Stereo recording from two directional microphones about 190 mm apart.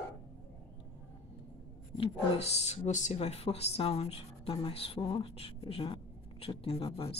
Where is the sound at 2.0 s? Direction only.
35° left (ahead or behind).